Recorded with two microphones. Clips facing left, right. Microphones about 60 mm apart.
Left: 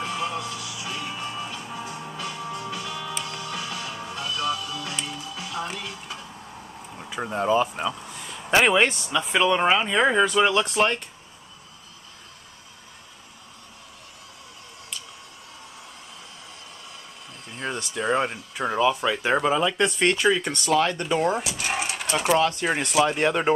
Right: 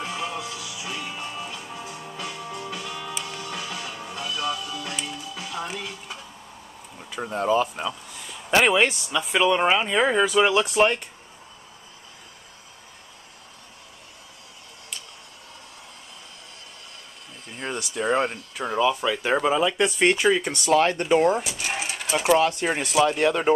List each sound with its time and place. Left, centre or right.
0.0 s music: centre
7.0 s speech: centre
17.5 s speech: centre; by 21.3 s right
21.4 s a sound: centre
22.4 s speech: centre
22.7 s speech: centre
22.9 s speech: centre